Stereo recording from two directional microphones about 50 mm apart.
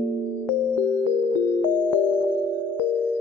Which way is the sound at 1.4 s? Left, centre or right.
Left.